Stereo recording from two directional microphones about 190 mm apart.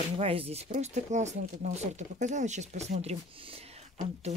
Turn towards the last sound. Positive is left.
turn(degrees=-35)  # may be behind; listen again after turning